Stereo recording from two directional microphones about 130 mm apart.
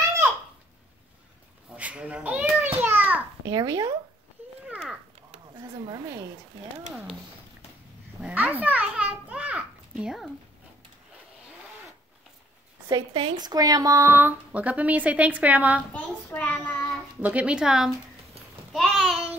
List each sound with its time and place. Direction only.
1.8 s a sound: 10° right (ahead or behind)
3.4 s speech: 30° right (ahead or behind)
5.6 s speech: 30° right (ahead or behind)
8.2 s children playing: 10° right (ahead or behind)
12.8 s a woman's voice: 40° right (ahead or behind); by 15.8 s 10° right (ahead or behind)
15.9 s a child's voice: 10° left (ahead or behind)
17.2 s a woman's voice: 10° right (ahead or behind)
18.7 s a sound: centre (ahead or behind)